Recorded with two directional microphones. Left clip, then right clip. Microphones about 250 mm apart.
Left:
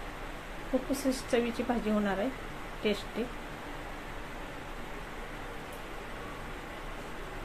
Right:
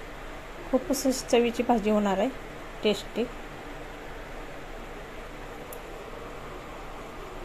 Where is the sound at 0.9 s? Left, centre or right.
Right.